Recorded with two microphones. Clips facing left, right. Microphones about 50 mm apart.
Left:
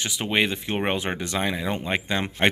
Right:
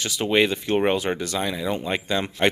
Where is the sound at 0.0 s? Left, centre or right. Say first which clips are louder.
Right 3 dB; centre.